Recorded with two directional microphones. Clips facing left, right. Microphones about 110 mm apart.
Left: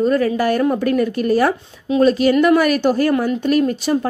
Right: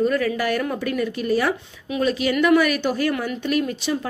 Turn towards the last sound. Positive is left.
turn(degrees=45)  # may be behind; listen again after turning